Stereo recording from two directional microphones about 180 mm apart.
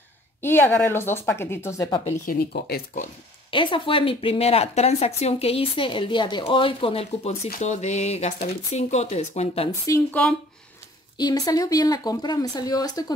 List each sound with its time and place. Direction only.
0.4 s speech: 10° left (ahead or behind)
2.2 s speech: 60° left (ahead or behind)
3.4 s speech: 30° left (ahead or behind)
7.4 s speech: 45° left (ahead or behind)
9.7 s speech: 15° left (ahead or behind)